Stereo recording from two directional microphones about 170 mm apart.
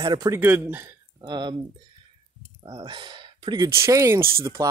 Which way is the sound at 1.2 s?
25° right (ahead or behind).